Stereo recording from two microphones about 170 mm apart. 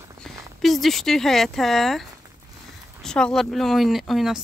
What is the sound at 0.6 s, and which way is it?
Speech, centre (ahead or behind).